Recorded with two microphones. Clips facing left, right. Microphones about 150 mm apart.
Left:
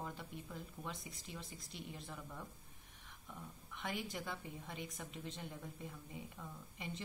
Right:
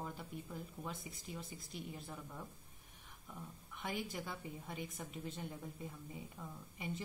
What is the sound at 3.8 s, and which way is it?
A woman's voice, centre (ahead or behind).